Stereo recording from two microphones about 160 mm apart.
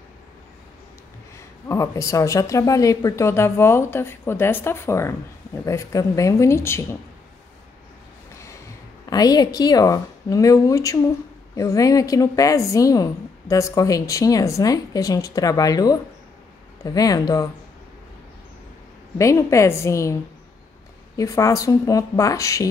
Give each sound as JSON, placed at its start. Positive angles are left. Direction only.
{"t": 1.7, "sound": "a woman's voice", "side_deg": 20}
{"t": 9.1, "sound": "a woman's voice", "side_deg": 25}
{"t": 19.1, "sound": "a woman's voice", "side_deg": 20}
{"t": 21.2, "sound": "a woman's voice", "side_deg": 20}